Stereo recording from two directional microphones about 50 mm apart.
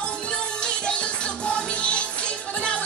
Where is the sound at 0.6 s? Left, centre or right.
Centre.